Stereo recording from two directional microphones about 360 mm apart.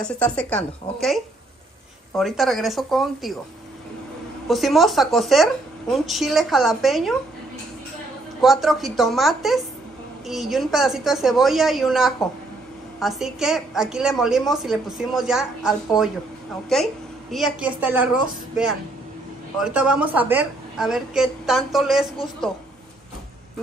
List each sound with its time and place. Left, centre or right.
0.0 s a woman's voice: centre
4.5 s a woman's voice: centre
8.4 s a woman's voice: centre
19.6 s a woman's voice: centre